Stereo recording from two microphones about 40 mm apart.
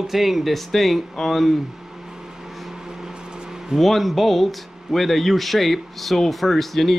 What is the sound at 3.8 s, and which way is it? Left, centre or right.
Speech, centre.